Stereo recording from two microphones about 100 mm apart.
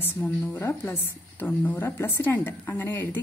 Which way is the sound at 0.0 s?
20° left (ahead or behind).